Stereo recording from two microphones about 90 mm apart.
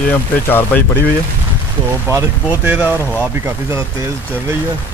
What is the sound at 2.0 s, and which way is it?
Speech, 25° right (ahead or behind).